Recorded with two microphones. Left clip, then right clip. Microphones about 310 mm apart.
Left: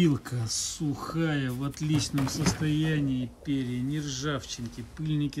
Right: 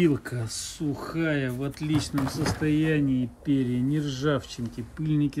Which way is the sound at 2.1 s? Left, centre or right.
Centre.